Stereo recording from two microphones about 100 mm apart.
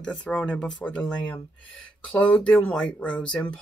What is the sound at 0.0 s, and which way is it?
Speech, 10° left (ahead or behind).